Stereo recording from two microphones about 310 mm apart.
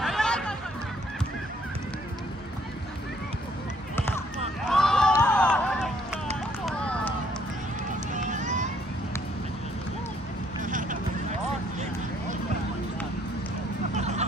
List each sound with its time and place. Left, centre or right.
0.0 s a sound: centre
3.9 s a sound: centre
4.6 s run: centre
8.1 s run: right
10.6 s vehicle: right
13.9 s vehicle: right